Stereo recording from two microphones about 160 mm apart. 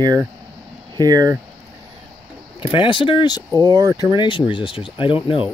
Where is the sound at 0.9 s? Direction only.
25° right (ahead or behind).